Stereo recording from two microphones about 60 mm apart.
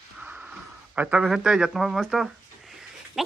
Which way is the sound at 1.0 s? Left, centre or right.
Right.